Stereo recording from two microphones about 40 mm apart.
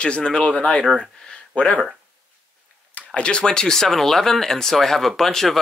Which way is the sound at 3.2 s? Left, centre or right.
Left.